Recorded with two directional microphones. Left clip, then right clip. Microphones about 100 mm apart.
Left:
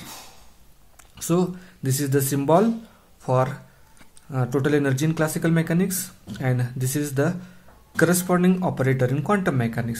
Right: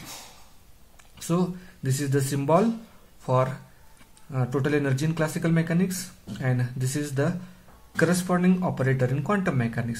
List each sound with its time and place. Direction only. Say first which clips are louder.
1.1 s speech: left 4 dB; 40° left (ahead or behind)